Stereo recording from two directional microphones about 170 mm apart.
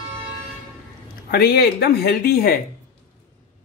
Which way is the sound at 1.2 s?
70° left (ahead or behind).